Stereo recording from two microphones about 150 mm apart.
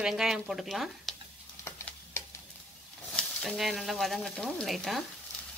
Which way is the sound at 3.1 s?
5° left (ahead or behind).